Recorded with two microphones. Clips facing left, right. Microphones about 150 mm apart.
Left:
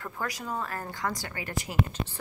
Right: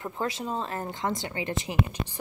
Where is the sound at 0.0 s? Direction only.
25° right (ahead or behind).